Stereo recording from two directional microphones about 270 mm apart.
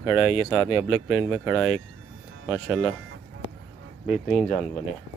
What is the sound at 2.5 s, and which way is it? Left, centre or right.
Speech, centre.